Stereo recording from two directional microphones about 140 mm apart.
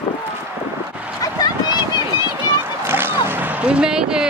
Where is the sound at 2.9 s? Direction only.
15° right (ahead or behind).